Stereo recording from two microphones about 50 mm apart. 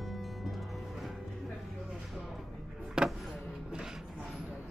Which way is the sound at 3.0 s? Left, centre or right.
Centre.